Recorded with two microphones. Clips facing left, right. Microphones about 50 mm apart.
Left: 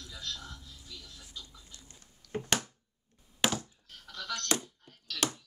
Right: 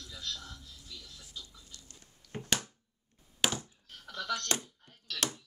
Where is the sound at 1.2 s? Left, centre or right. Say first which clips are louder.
Even; left.